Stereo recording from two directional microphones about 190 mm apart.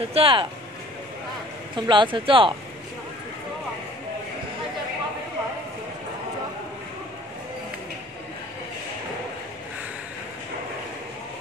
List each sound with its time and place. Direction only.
0.1 s speech: 30° right (ahead or behind)
1.8 s speech: 25° right (ahead or behind)